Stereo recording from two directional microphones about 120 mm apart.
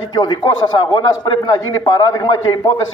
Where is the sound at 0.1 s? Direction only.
35° left (ahead or behind).